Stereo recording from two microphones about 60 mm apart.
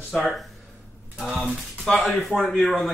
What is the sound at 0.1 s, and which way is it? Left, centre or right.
Speech, centre.